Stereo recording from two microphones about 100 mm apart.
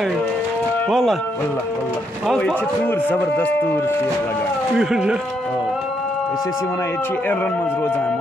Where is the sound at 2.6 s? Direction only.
20° left (ahead or behind).